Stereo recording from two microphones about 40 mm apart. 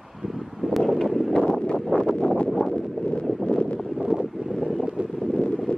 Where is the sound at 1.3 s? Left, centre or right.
Centre.